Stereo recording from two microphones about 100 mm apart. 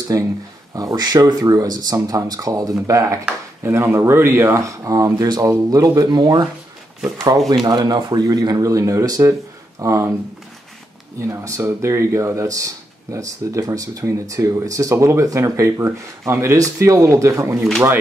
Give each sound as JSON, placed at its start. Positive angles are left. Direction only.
{"t": 0.1, "sound": "speech", "side_deg": -30}
{"t": 7.6, "sound": "speech", "side_deg": -45}
{"t": 11.1, "sound": "speech", "side_deg": -30}